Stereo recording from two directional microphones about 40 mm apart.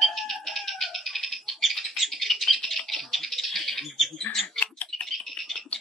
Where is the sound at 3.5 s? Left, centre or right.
Centre.